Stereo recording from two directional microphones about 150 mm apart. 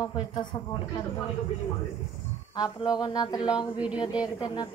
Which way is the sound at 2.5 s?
25° left (ahead or behind).